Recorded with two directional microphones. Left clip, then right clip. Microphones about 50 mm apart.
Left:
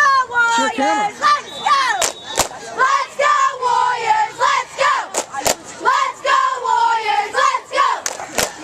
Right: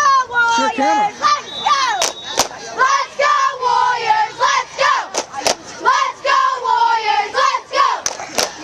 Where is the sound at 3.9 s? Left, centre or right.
Right.